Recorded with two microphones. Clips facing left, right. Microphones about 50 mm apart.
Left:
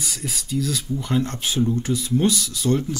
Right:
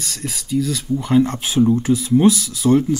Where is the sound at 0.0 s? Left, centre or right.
Centre.